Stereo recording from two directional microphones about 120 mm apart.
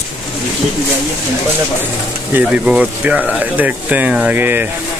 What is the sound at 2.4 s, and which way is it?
Speech, 10° right (ahead or behind).